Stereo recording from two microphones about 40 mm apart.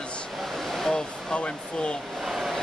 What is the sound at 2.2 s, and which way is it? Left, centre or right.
Vehicle, centre.